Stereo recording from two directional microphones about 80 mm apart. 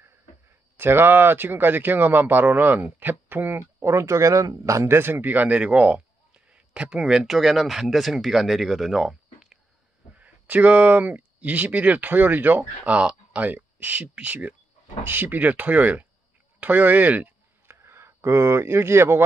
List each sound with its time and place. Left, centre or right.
0.7 s speech: right
3.5 s speech: right; by 9.6 s centre
10.1 s speech: centre
17.6 s speech: right